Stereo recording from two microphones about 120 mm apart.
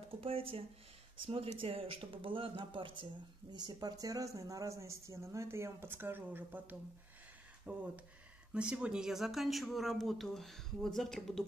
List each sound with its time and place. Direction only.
0.2 s speech: 50° right (ahead or behind); by 11.4 s 5° left (ahead or behind)